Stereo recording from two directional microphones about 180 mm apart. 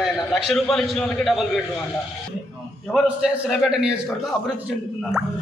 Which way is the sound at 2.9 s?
5° right (ahead or behind).